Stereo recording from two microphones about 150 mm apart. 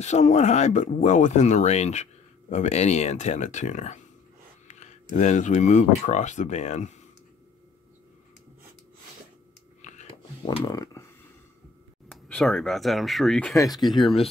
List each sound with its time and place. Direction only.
0.0 s speech: 50° left (ahead or behind)
9.8 s a sound: 50° left (ahead or behind)
10.6 s speech: 20° left (ahead or behind)
12.1 s speech: 5° left (ahead or behind)
13.6 s speech: 25° left (ahead or behind)
13.8 s speech: centre (ahead or behind)